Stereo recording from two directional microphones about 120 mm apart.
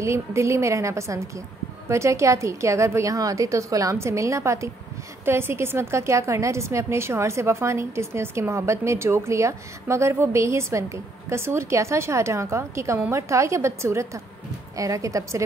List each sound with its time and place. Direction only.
0.0 s a woman's voice: 25° right (ahead or behind)